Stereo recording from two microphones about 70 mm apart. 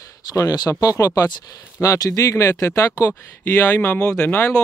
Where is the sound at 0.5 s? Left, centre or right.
Left.